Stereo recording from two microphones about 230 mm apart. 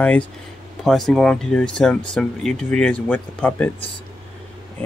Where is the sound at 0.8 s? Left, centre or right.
Centre.